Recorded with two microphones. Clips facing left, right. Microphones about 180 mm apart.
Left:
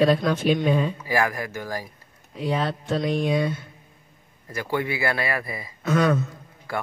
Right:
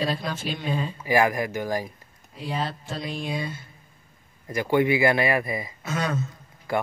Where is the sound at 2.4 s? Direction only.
60° left (ahead or behind).